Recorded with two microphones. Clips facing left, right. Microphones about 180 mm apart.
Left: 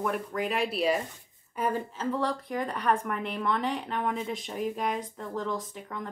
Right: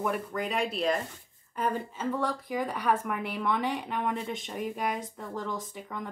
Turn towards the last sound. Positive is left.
turn(degrees=0)  # may be behind; listen again after turning